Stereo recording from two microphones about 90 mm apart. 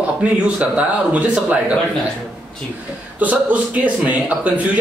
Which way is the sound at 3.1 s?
15° right (ahead or behind).